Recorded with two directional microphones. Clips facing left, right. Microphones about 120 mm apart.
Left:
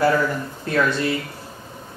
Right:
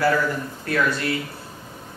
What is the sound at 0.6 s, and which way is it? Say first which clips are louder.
Speech: left 3 dB; 25° left (ahead or behind).